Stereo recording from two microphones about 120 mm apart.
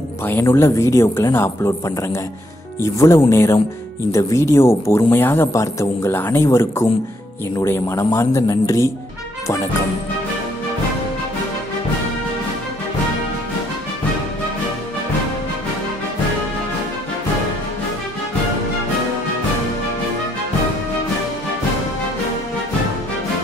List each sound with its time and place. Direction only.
0.2 s speech: 20° left (ahead or behind)